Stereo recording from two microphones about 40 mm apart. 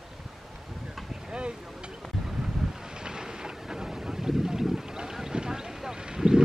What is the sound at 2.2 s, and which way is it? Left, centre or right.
Vehicle, centre.